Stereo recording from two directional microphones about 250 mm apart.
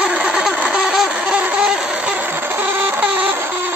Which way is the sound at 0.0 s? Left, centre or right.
Centre.